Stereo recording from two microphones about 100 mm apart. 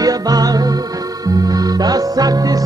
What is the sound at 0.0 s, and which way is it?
Music, 40° right (ahead or behind).